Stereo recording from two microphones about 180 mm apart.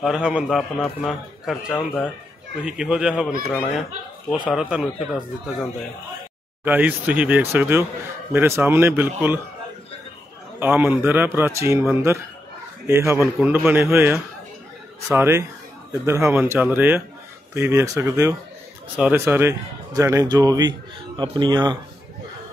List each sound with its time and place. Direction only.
0.0 s a man's voice: 5° right (ahead or behind)
4.5 s a man's voice: 5° right (ahead or behind)
10.6 s speech: 10° right (ahead or behind)